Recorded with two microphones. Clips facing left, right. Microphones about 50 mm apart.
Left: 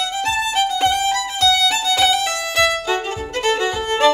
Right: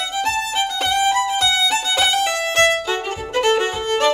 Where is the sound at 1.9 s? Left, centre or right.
Right.